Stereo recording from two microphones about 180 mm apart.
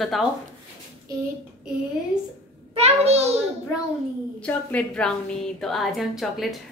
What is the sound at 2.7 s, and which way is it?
Speech, 35° right (ahead or behind).